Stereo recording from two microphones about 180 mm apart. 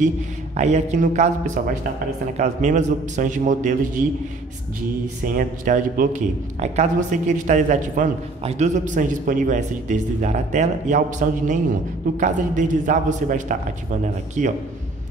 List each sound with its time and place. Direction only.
0.6 s a man's voice: 40° right (ahead or behind)
5.2 s a man's voice: 50° right (ahead or behind)
6.6 s a man's voice: 40° right (ahead or behind)